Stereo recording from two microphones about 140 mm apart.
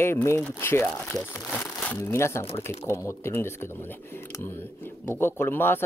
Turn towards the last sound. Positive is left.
turn(degrees=15)  # may be behind; listen again after turning